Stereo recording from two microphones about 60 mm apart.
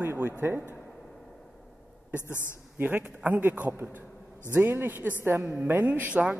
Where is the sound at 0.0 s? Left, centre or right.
Right.